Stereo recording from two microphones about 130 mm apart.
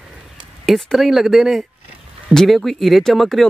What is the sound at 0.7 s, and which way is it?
Speech, centre (ahead or behind).